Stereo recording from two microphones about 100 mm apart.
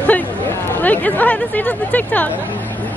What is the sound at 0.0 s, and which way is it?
Speech, 20° left (ahead or behind).